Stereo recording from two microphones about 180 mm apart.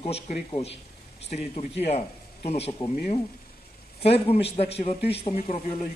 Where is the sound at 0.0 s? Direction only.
35° left (ahead or behind).